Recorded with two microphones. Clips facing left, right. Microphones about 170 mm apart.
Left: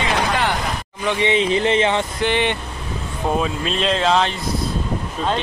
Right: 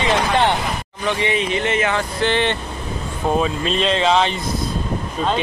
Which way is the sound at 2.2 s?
15° left (ahead or behind).